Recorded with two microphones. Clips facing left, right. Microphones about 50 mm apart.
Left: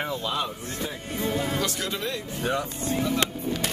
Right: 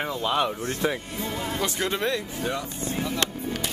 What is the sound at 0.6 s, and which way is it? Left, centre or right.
Speech, right.